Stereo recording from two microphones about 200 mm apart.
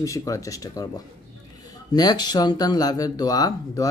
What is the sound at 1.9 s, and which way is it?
Speech, 20° left (ahead or behind).